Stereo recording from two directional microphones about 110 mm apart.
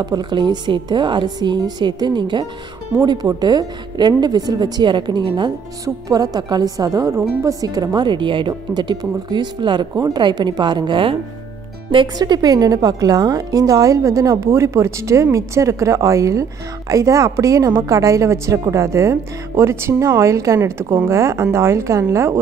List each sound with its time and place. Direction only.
0.0 s a woman's voice: 40° right (ahead or behind)
6.0 s a woman's voice: 35° right (ahead or behind)
9.9 s a woman's voice: 30° right (ahead or behind)
10.2 s a woman's voice: 40° right (ahead or behind)
12.2 s a woman's voice: 35° right (ahead or behind)